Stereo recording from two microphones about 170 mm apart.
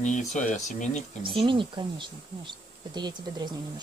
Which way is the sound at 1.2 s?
30° right (ahead or behind).